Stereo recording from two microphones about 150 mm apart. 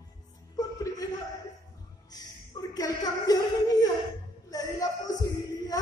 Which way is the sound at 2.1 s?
25° left (ahead or behind).